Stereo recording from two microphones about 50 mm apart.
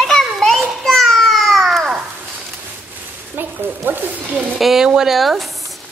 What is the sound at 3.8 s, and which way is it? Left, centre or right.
Speech, right.